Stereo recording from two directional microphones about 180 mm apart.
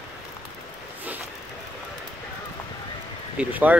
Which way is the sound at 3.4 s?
10° right (ahead or behind).